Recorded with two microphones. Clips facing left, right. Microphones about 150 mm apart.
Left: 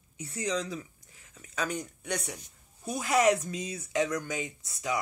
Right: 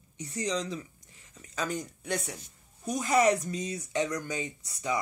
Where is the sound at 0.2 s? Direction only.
5° left (ahead or behind).